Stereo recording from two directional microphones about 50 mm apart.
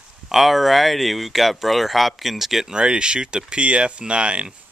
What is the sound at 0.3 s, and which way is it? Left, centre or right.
Speech, centre.